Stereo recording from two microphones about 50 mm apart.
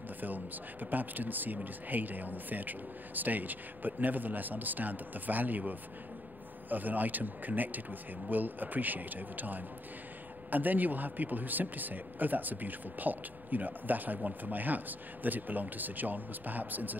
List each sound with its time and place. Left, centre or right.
0.2 s a man's voice: right